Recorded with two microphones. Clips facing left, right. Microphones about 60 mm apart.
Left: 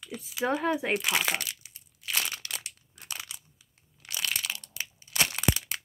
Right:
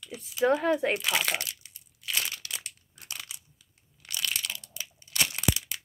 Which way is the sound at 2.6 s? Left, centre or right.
Centre.